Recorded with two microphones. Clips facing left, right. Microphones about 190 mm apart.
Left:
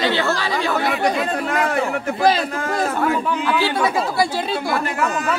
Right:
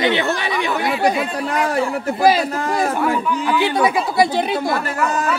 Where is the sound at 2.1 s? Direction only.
10° right (ahead or behind).